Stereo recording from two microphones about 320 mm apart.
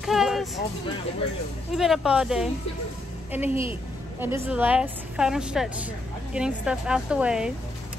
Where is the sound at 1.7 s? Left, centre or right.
Centre.